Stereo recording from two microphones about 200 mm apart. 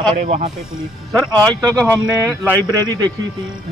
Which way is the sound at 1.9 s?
15° right (ahead or behind).